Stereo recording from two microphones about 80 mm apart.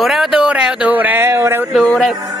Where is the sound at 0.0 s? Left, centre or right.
Centre; by 1.2 s right.